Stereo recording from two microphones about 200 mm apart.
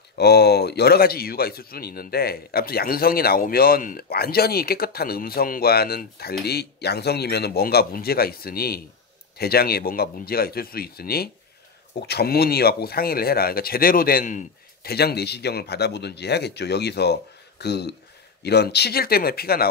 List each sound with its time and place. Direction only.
0.2 s a man's voice: 55° left (ahead or behind)